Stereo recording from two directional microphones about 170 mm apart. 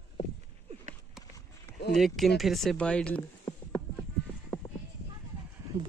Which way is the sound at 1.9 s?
Centre (ahead or behind).